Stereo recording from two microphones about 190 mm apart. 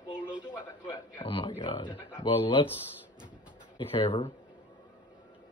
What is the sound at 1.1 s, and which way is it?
Speech, 25° left (ahead or behind).